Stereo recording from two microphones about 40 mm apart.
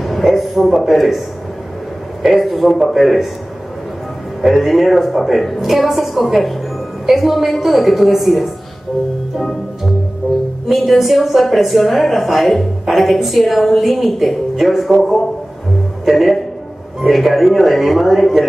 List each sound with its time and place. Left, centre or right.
0.0 s a sound: centre
2.2 s a woman's voice: centre
4.4 s a woman's voice: centre
10.2 s speech: right
10.7 s a woman's voice: centre